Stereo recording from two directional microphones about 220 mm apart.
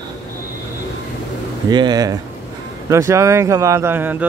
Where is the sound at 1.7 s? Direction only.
20° right (ahead or behind).